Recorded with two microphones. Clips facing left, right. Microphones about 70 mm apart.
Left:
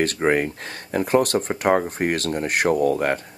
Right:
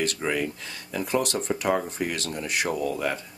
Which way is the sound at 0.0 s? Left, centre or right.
Left.